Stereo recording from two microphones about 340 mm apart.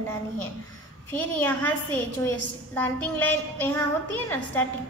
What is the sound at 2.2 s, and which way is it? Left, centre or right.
A woman's voice, centre.